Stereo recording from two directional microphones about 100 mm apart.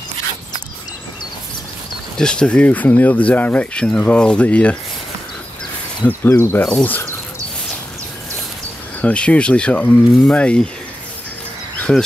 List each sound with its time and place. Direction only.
2.1 s speech: 10° left (ahead or behind)
6.0 s speech: 25° left (ahead or behind)
9.0 s speech: 10° left (ahead or behind)
11.9 s speech: 5° left (ahead or behind)